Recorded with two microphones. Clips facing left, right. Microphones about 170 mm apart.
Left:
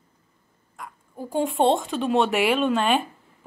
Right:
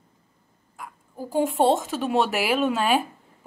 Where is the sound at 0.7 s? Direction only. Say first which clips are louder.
Even; 5° right (ahead or behind).